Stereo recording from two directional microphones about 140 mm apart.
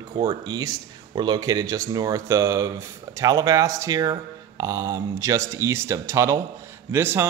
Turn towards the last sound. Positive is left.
turn(degrees=-20)  # may be behind; listen again after turning